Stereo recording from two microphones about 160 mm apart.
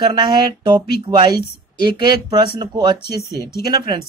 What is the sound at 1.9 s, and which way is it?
Speech, 30° right (ahead or behind).